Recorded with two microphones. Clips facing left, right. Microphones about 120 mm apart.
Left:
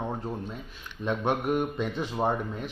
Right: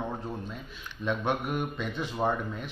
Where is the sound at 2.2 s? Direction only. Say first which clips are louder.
Left 1 dB; 15° left (ahead or behind).